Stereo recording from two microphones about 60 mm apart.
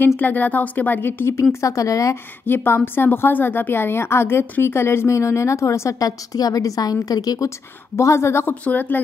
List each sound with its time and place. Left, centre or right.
0.0 s speech: left
1.3 s speech: left
2.4 s a woman's voice: left
7.4 s a woman's voice: left
8.5 s speech: left